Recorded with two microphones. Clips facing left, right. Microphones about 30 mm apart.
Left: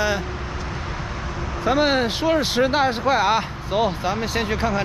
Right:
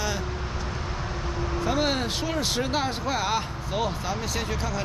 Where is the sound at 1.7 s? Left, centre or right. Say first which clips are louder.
Left 8 dB; left.